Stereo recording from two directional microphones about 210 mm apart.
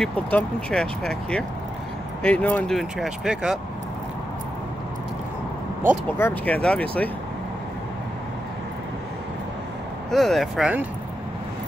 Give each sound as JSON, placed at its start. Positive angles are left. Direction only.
{"t": 0.0, "sound": "speech", "side_deg": 5}
{"t": 6.1, "sound": "speech", "side_deg": 10}
{"t": 10.1, "sound": "speech", "side_deg": 0}